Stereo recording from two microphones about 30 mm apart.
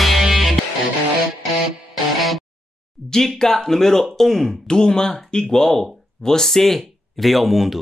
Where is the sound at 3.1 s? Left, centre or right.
Centre.